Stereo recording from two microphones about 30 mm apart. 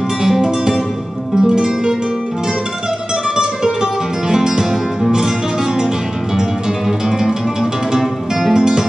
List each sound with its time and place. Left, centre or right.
0.3 s music: centre
1.3 s music: right
3.3 s music: centre
7.1 s music: centre
8.5 s music: right